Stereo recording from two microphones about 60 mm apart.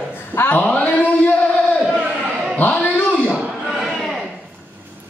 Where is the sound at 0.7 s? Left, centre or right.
Left.